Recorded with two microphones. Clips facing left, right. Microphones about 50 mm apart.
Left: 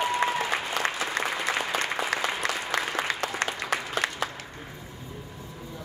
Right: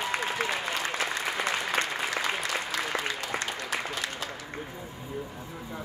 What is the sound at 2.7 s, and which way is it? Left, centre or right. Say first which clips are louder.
Applause: left 3 dB; left.